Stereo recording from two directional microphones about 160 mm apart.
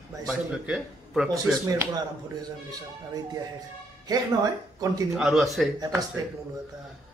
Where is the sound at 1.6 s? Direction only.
20° right (ahead or behind).